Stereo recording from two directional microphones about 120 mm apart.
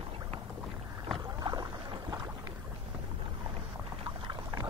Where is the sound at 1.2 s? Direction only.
30° right (ahead or behind).